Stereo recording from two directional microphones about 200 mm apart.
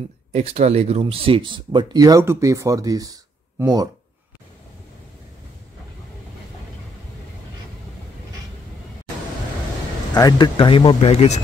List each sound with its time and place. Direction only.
0.3 s speech: 30° right (ahead or behind)
10.1 s speech: 20° left (ahead or behind)